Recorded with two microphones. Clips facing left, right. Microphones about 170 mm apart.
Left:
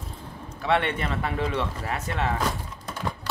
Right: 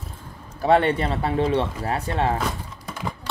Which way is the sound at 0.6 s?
35° right (ahead or behind).